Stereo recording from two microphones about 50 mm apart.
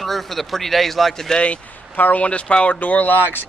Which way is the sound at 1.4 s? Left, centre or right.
Left.